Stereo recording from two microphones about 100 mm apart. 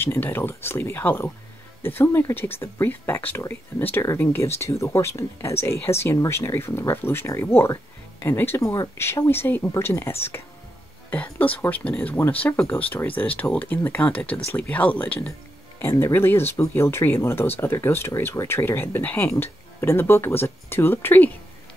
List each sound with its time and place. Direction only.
0.0 s speech: 20° left (ahead or behind)